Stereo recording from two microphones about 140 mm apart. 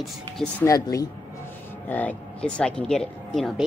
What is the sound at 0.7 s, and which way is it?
Speech, 25° left (ahead or behind).